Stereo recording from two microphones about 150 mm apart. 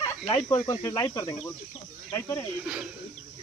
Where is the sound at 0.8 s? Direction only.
20° left (ahead or behind).